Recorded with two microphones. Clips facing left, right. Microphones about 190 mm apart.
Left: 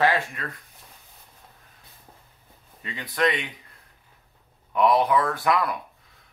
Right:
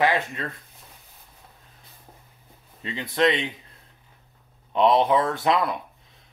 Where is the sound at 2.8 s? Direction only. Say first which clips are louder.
Right 3 dB; 25° right (ahead or behind).